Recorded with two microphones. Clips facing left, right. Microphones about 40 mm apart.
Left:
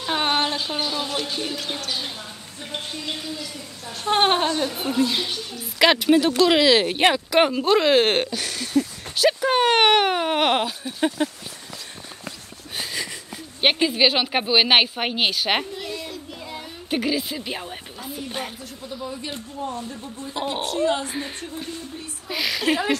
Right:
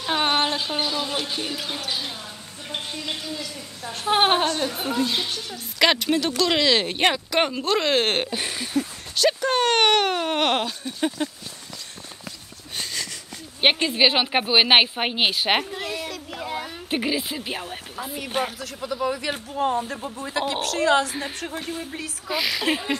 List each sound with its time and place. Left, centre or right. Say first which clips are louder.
0.0 s a sound: even; centre
1.0 s speech: left 1 dB; centre
4.0 s speech: even; centre
8.3 s a sound: even; centre
9.1 s speech: left 2 dB; centre
12.3 s a sound: left 3 dB; centre
13.6 s speech: even; centre
15.7 s child singing: right 2 dB; right
16.9 s speech: left 1 dB; centre
18.6 s speech: right 6 dB; right
22.3 s speech: left 1 dB; centre